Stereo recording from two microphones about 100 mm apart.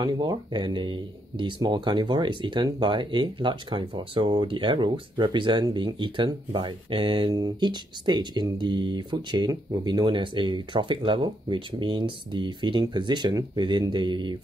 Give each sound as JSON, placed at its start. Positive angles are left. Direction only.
{"t": 0.0, "sound": "speech", "side_deg": -45}
{"t": 7.3, "sound": "speech", "side_deg": -45}
{"t": 13.6, "sound": "speech", "side_deg": -55}